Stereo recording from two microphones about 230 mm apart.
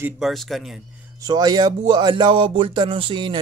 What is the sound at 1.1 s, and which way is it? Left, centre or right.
Speech, centre.